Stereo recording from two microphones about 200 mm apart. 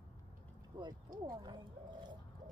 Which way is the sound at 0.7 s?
20° right (ahead or behind).